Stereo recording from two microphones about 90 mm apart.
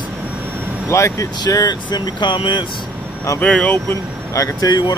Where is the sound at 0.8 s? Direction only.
35° left (ahead or behind).